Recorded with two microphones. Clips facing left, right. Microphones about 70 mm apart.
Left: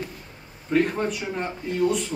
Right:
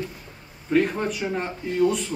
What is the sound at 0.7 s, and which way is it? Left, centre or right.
Speech, centre.